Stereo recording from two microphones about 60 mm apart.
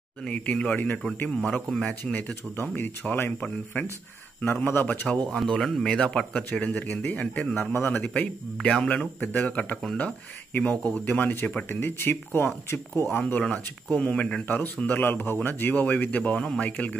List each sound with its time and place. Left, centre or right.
0.2 s speech: centre
1.3 s speech: centre
2.6 s speech: left
5.0 s speech: centre
5.4 s speech: centre; by 7.5 s left
7.7 s speech: left
8.0 s speech: left
8.5 s speech: centre
11.7 s speech: left
13.4 s speech: centre